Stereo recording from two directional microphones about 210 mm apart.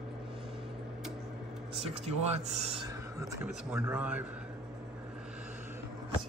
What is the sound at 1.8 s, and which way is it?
Speech, 30° right (ahead or behind).